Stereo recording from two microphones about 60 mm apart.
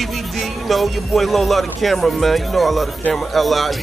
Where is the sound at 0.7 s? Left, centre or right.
Centre.